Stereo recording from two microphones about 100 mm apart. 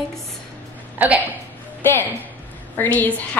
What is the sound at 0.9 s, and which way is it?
Speech, 15° right (ahead or behind).